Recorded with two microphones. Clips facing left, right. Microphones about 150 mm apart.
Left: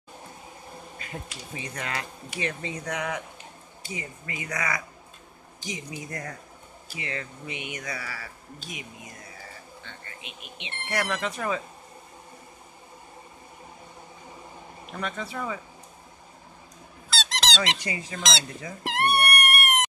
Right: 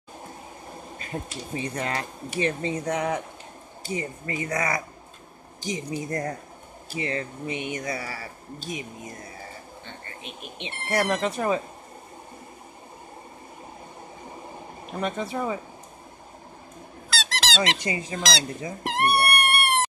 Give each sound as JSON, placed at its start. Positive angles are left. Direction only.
{"t": 0.9, "sound": "speech", "side_deg": -35}
{"t": 15.0, "sound": "speech", "side_deg": -25}
{"t": 17.1, "sound": "honk", "side_deg": 0}
{"t": 17.8, "sound": "speech", "side_deg": -25}
{"t": 19.1, "sound": "cat", "side_deg": -30}